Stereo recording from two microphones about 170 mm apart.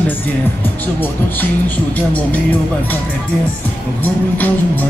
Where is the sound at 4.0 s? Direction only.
10° left (ahead or behind).